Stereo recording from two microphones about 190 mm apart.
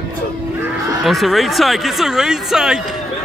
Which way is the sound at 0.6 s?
Centre (ahead or behind).